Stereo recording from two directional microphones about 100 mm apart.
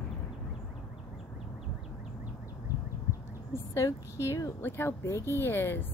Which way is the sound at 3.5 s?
30° left (ahead or behind).